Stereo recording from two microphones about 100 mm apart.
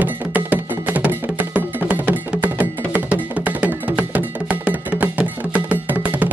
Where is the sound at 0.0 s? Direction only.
15° right (ahead or behind).